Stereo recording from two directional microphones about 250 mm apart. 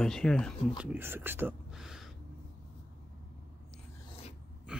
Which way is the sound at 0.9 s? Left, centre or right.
Centre.